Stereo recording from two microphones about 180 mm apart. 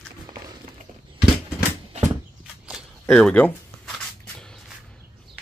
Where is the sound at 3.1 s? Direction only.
5° left (ahead or behind).